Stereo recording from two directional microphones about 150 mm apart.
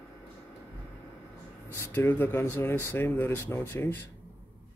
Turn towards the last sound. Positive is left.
turn(degrees=15)  # may be behind; listen again after turning